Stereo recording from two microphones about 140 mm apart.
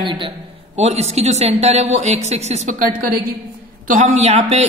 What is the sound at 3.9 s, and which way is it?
Speech, 55° right (ahead or behind).